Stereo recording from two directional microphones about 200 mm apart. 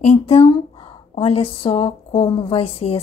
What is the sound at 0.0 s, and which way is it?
A woman's voice, 30° left (ahead or behind).